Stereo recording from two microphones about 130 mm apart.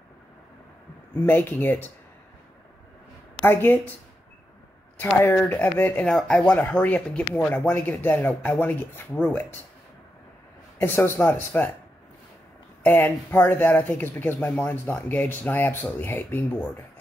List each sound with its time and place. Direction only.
1.2 s speech: 15° left (ahead or behind)
3.4 s speech: 15° left (ahead or behind)
4.9 s speech: 15° left (ahead or behind)
10.8 s speech: 15° left (ahead or behind)
12.8 s speech: 15° left (ahead or behind)